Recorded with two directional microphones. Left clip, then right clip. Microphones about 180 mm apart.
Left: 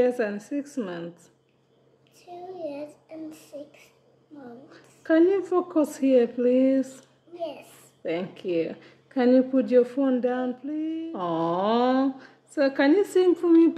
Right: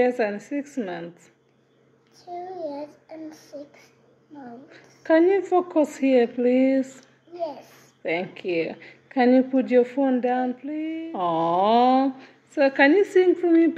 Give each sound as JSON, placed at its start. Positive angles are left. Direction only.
{"t": 0.0, "sound": "a woman's voice", "side_deg": 15}
{"t": 2.1, "sound": "a child's voice", "side_deg": 35}
{"t": 4.6, "sound": "a woman's voice", "side_deg": 15}
{"t": 8.0, "sound": "a woman's voice", "side_deg": 15}